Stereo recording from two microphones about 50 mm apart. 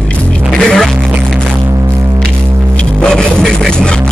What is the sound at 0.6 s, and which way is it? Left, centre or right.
Music, centre.